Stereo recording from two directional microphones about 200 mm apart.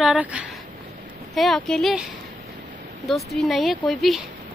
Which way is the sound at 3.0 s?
Centre (ahead or behind).